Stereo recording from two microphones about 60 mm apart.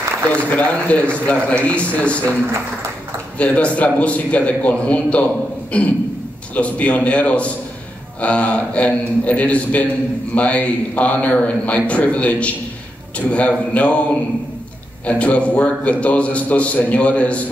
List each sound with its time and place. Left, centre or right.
0.4 s a man's voice: left
3.3 s a man's voice: left
15.0 s a man's voice: left